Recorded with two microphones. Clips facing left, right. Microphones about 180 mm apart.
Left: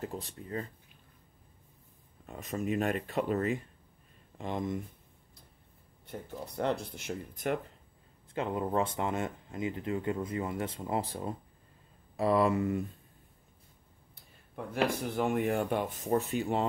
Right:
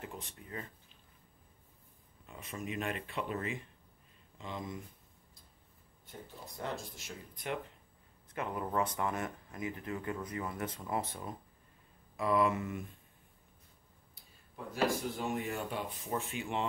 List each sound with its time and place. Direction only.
0.0 s speech: 35° left (ahead or behind)
2.2 s speech: 45° left (ahead or behind)
6.0 s speech: 65° left (ahead or behind)
8.3 s speech: 25° left (ahead or behind)
14.5 s speech: 60° left (ahead or behind); by 16.6 s 40° left (ahead or behind)